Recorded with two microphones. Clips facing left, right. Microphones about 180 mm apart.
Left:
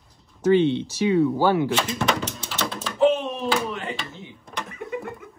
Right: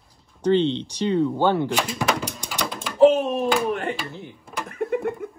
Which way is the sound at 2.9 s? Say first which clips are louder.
Right 5 dB; 40° right (ahead or behind).